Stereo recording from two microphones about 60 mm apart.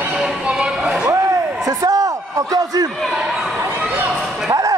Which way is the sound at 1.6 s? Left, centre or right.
Right.